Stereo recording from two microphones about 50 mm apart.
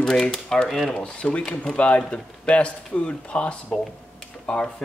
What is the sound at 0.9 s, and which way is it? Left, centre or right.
Speech, left.